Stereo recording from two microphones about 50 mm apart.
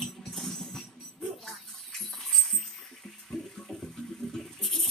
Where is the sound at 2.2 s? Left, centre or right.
Centre.